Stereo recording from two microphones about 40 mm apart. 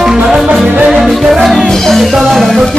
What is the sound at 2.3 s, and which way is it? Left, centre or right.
Music, centre.